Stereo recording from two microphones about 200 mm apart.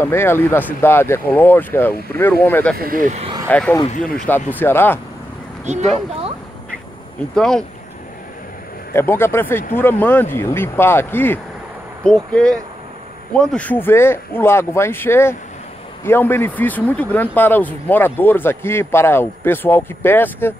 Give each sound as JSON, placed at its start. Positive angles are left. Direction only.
{"t": 0.0, "sound": "speech", "side_deg": 10}
{"t": 2.8, "sound": "speech", "side_deg": -45}
{"t": 3.4, "sound": "speech", "side_deg": 5}
{"t": 5.7, "sound": "speech", "side_deg": -35}
{"t": 7.3, "sound": "speech", "side_deg": 5}
{"t": 8.9, "sound": "speech", "side_deg": 10}